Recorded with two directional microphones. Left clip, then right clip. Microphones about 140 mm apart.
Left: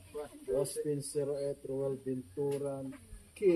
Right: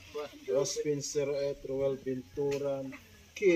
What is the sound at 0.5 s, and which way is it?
Speech, 10° left (ahead or behind).